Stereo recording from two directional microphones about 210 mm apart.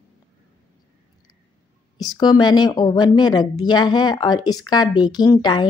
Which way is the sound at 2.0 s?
20° left (ahead or behind).